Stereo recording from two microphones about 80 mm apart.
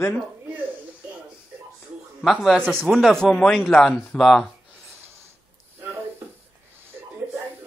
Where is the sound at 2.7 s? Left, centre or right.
Centre.